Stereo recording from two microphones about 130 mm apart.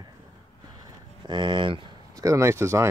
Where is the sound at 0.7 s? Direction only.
35° right (ahead or behind).